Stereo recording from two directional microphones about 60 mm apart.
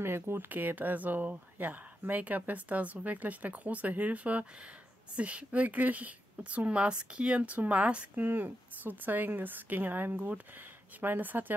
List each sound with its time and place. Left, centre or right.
0.0 s a woman's voice: right